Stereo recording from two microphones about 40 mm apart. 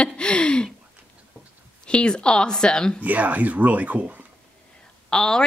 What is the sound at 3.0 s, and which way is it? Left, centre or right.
Speech, right.